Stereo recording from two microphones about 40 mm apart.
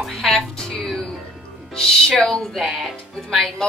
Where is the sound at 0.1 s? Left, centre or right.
Centre.